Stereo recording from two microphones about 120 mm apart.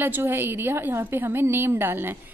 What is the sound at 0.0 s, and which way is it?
A woman's voice, 15° right (ahead or behind).